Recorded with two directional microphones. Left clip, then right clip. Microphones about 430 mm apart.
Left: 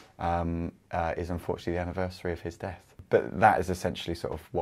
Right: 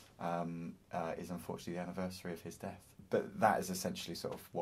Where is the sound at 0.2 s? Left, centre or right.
Left.